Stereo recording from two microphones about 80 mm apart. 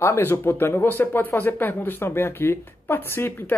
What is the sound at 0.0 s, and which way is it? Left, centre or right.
Speech, left.